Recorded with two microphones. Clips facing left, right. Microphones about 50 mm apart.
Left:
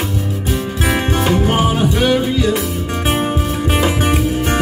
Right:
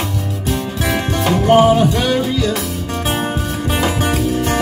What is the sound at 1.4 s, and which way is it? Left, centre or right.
Music, centre.